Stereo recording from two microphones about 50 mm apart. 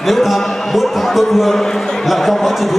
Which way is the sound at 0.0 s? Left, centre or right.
Centre.